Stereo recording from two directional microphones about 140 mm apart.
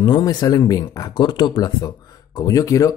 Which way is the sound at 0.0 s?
30° left (ahead or behind).